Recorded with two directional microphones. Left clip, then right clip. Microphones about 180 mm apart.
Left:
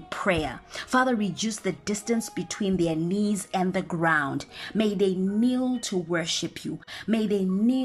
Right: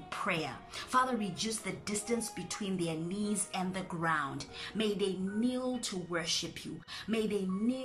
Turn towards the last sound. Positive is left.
turn(degrees=35)  # may be behind; listen again after turning